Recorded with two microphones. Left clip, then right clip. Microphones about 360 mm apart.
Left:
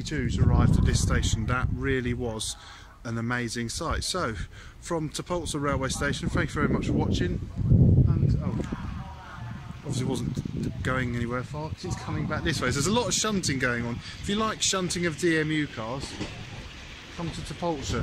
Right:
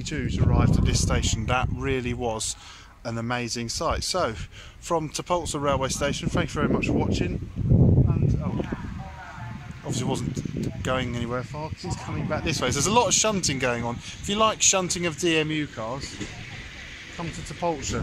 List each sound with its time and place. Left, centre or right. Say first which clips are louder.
0.0 s speech: right 1 dB; centre
7.7 s a sound: right 3 dB; right
9.8 s speech: right 3 dB; centre
17.6 s speech: right 3 dB; centre